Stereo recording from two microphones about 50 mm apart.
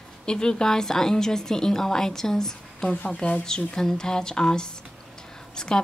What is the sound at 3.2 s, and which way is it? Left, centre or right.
Speech, left.